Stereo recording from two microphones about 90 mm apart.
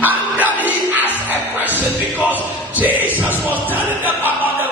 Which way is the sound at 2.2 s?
20° right (ahead or behind).